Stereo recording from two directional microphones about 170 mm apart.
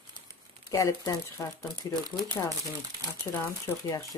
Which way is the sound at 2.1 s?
10° left (ahead or behind).